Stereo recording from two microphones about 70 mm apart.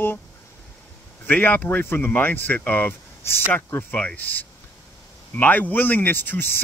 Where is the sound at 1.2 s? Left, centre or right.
Left.